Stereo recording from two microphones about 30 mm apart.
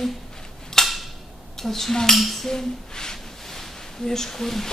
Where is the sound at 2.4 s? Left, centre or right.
Centre.